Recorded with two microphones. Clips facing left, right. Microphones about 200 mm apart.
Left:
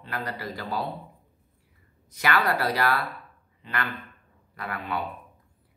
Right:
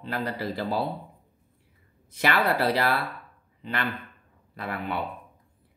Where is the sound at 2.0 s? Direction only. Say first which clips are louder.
Right 2 dB; 30° right (ahead or behind).